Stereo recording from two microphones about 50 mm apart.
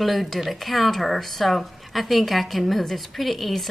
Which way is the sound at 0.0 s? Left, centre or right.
Centre.